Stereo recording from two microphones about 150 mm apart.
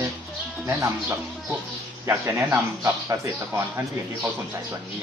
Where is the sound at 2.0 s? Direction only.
20° right (ahead or behind).